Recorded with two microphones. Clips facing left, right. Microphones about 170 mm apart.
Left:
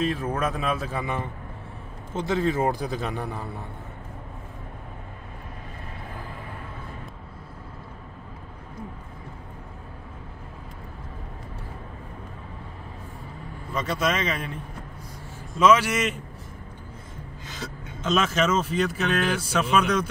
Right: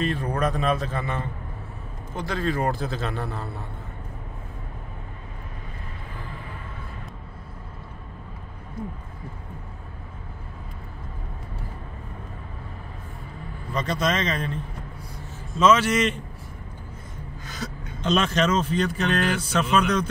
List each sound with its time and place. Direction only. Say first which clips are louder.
0.0 s speech: right 1 dB; centre (ahead or behind)
13.7 s speech: right 1 dB; 5° left (ahead or behind)
17.5 s gasp: right 2 dB; 25° left (ahead or behind)
18.0 s speech: right 1 dB; 5° left (ahead or behind)